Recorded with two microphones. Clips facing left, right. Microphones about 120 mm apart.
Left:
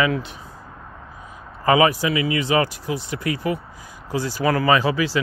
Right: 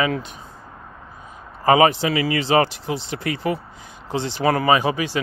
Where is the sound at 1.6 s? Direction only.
30° right (ahead or behind).